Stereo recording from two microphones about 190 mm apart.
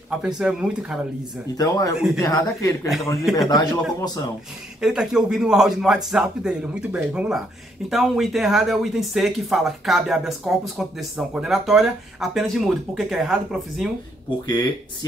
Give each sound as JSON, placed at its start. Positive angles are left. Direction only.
{"t": 0.2, "sound": "speech", "side_deg": -5}
{"t": 1.6, "sound": "speech", "side_deg": 15}
{"t": 4.7, "sound": "speech", "side_deg": -5}
{"t": 14.4, "sound": "speech", "side_deg": 20}